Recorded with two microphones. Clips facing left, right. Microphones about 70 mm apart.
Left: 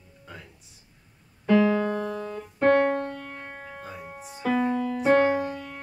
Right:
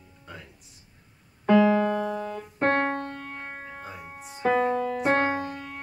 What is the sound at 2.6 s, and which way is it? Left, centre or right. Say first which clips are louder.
Music: left 4 dB; right.